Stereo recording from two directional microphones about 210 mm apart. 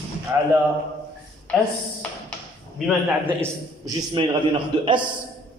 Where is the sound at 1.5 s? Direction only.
5° left (ahead or behind).